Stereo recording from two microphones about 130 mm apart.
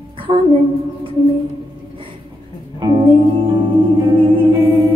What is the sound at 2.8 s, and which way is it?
Music, 35° right (ahead or behind).